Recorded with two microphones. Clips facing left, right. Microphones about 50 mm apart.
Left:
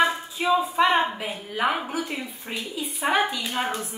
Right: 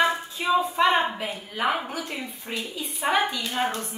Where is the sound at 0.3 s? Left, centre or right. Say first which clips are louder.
Left 1 dB; centre.